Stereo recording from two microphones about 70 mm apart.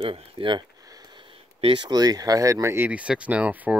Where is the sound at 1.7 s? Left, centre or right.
Right.